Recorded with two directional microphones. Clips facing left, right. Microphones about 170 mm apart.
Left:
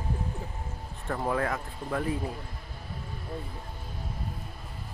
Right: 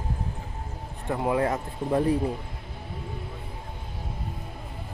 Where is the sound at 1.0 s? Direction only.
15° right (ahead or behind).